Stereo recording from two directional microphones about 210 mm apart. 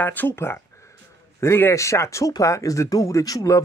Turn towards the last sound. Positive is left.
turn(degrees=15)  # may be behind; listen again after turning